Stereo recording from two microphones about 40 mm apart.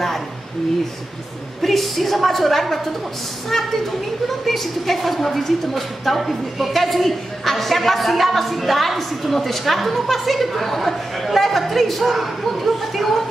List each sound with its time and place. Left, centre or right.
1.6 s a woman's voice: centre